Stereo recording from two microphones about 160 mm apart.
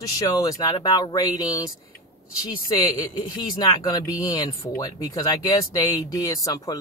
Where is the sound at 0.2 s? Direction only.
20° left (ahead or behind).